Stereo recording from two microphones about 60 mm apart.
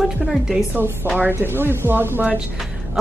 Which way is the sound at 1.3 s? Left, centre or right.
Right.